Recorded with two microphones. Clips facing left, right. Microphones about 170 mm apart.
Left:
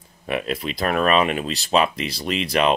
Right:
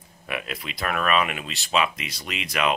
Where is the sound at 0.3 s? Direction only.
30° left (ahead or behind).